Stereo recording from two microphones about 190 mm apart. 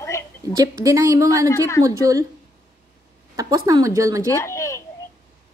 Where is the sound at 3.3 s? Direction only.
20° right (ahead or behind).